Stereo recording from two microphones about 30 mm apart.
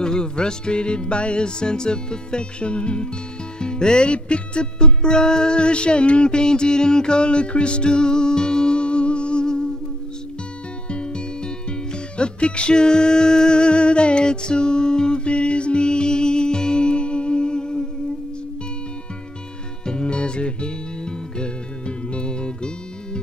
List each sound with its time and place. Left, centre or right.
0.0 s music: left
10.9 s music: left
19.9 s music: left